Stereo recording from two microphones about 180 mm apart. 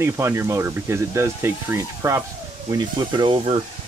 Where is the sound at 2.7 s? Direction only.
25° right (ahead or behind).